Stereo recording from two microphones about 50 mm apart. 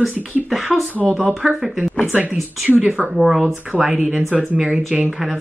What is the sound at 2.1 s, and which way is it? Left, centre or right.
Speech, right.